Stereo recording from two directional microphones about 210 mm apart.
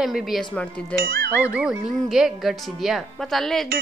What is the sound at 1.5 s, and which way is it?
Speech, 5° right (ahead or behind).